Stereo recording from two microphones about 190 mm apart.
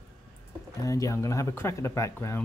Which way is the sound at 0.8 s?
15° left (ahead or behind).